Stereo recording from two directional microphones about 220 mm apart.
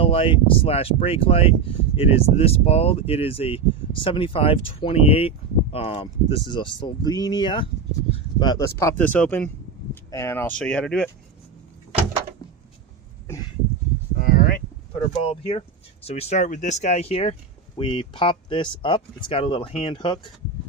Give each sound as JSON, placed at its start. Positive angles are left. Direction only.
{"t": 0.0, "sound": "speech", "side_deg": 25}
{"t": 14.1, "sound": "a sound", "side_deg": 40}
{"t": 15.2, "sound": "speech", "side_deg": 25}